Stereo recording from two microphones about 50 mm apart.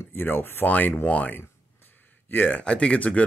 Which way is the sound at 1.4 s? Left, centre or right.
Left.